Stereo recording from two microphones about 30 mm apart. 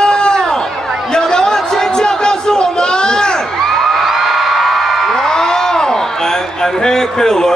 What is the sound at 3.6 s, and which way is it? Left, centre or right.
Crowd, centre.